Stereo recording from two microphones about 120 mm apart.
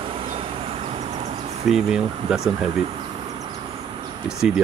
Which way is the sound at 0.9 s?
65° right (ahead or behind).